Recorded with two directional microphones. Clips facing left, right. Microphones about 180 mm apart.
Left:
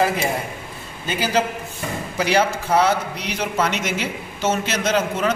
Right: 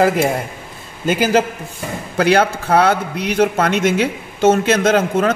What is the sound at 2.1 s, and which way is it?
A man's voice, 55° right (ahead or behind).